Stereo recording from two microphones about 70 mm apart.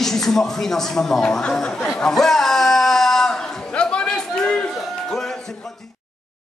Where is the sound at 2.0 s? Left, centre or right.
Centre.